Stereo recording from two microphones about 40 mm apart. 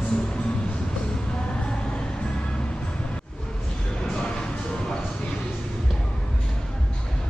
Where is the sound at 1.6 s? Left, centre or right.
Left.